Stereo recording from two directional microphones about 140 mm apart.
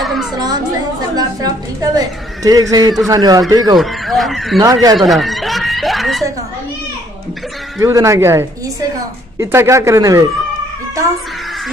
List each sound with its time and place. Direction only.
0.0 s a sound: centre (ahead or behind)
1.1 s a woman's voice: 25° right (ahead or behind)
3.7 s speech: centre (ahead or behind)
4.6 s a woman's voice: 25° right (ahead or behind)
4.9 s chuckle: centre (ahead or behind)
7.8 s a woman's voice: 20° right (ahead or behind)